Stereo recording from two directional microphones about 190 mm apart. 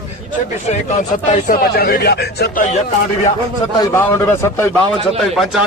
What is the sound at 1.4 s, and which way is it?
Speech, 50° left (ahead or behind).